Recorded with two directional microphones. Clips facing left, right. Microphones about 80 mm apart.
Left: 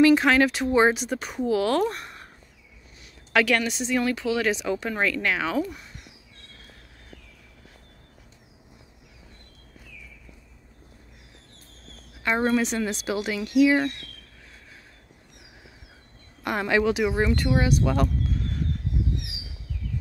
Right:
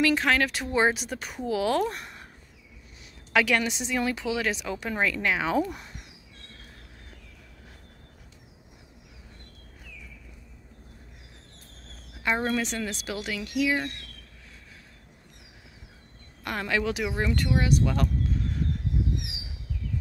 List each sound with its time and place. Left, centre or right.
0.0 s speech: centre
0.5 s speech: centre
3.3 s speech: centre
4.5 s speech: centre
5.6 s speech: right
12.4 s speech: centre; by 13.9 s left
16.4 s speech: centre